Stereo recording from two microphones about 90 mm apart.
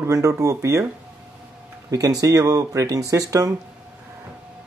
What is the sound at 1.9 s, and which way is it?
Speech, 40° right (ahead or behind).